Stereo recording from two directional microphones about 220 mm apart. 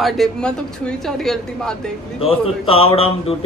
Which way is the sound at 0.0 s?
Centre (ahead or behind).